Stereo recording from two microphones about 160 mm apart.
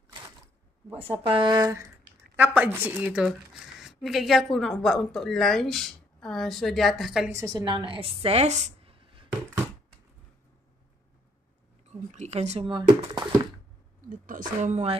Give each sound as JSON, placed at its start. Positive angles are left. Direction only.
{"t": 0.8, "sound": "a woman's voice", "side_deg": -15}
{"t": 1.2, "sound": "speech", "side_deg": -30}
{"t": 2.3, "sound": "a woman's voice", "side_deg": -10}
{"t": 7.2, "sound": "a woman's voice", "side_deg": -20}
{"t": 12.1, "sound": "a sound", "side_deg": -45}
{"t": 12.6, "sound": "speech", "side_deg": -30}
{"t": 14.0, "sound": "a woman's voice", "side_deg": -55}